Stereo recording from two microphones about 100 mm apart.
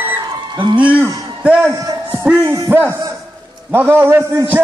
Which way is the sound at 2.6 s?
20° right (ahead or behind).